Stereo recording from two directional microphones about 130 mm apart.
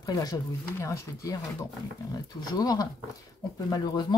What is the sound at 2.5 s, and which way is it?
Speech, 30° left (ahead or behind).